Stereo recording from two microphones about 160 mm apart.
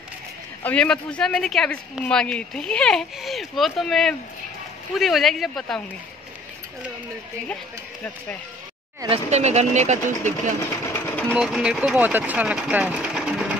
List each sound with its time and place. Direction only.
0.7 s speech: 5° left (ahead or behind)
9.1 s speech: 45° right (ahead or behind)
10.9 s sewing machine: 10° left (ahead or behind)
11.3 s speech: 5° right (ahead or behind)